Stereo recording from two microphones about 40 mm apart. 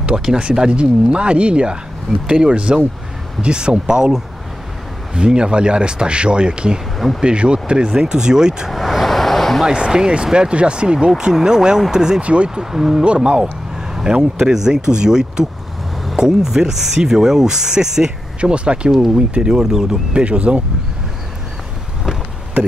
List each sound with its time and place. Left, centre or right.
0.0 s speech: centre
8.7 s vehicle: centre
9.7 s speech: centre
12.2 s speech: right
12.4 s speech: centre
13.0 s speech: right
14.4 s speech: centre
18.4 s speech: right
19.5 s speech: centre
20.1 s speech: right